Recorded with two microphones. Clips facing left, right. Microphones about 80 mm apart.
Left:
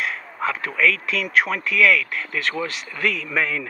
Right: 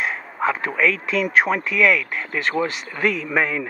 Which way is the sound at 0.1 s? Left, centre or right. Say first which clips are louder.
Right 3 dB; centre.